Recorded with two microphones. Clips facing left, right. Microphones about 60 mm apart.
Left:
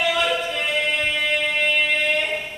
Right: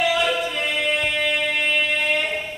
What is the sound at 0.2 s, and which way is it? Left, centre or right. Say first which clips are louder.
Choir: even; centre.